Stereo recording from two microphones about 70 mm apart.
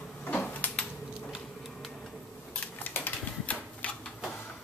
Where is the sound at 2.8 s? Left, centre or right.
Left.